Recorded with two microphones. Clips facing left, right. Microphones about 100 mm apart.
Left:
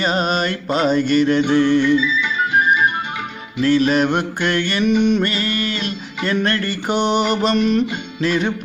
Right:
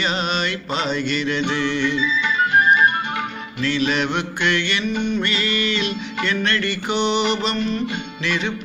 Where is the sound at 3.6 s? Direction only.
45° left (ahead or behind).